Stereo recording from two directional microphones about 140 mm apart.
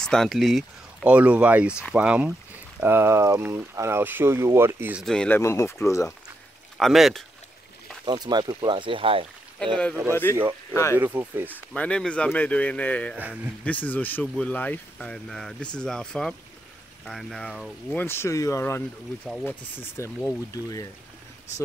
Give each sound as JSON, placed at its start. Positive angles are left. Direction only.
{"t": 0.0, "sound": "speech", "side_deg": 5}
{"t": 1.0, "sound": "speech", "side_deg": -10}
{"t": 5.0, "sound": "speech", "side_deg": 5}
{"t": 5.4, "sound": "speech", "side_deg": 20}
{"t": 6.8, "sound": "speech", "side_deg": 0}
{"t": 8.0, "sound": "speech", "side_deg": -30}
{"t": 10.7, "sound": "speech", "side_deg": 20}
{"t": 11.0, "sound": "speech", "side_deg": -15}
{"t": 11.7, "sound": "speech", "side_deg": 10}
{"t": 13.1, "sound": "speech", "side_deg": -10}
{"t": 13.7, "sound": "speech", "side_deg": 10}
{"t": 18.0, "sound": "speech", "side_deg": 15}